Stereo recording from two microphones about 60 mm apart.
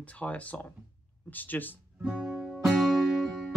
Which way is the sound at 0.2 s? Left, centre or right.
Left.